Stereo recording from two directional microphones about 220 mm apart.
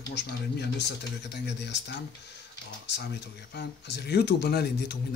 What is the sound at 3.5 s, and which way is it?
Speech, 50° left (ahead or behind).